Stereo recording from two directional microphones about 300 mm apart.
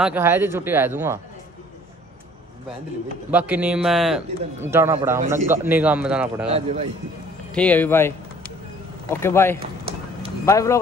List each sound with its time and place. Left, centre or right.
0.0 s speech: centre
3.3 s a man's voice: centre
6.5 s speech: centre
7.5 s a man's voice: centre
9.2 s speech: centre